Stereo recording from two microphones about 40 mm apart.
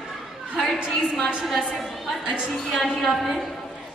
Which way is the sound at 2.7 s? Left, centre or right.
Centre.